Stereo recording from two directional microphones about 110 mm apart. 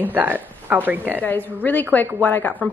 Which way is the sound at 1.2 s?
15° left (ahead or behind).